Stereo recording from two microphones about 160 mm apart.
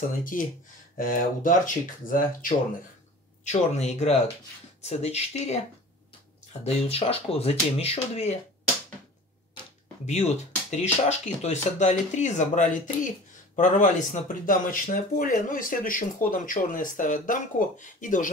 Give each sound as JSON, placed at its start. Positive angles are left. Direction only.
{"t": 0.3, "sound": "speech", "side_deg": 55}
{"t": 3.4, "sound": "speech", "side_deg": 45}
{"t": 6.6, "sound": "speech", "side_deg": 40}
{"t": 10.0, "sound": "speech", "side_deg": 45}